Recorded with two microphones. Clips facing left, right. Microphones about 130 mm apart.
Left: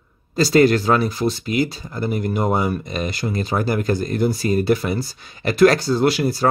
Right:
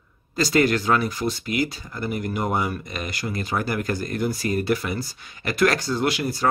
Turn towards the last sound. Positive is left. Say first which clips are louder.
# left 6 dB
turn(degrees=30)  # may be behind; listen again after turning